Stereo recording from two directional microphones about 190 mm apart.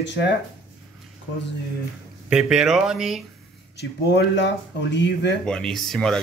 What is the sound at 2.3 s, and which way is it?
Speech, 5° right (ahead or behind).